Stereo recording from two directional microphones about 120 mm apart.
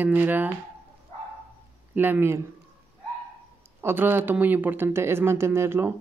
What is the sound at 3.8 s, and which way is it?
Speech, 20° right (ahead or behind).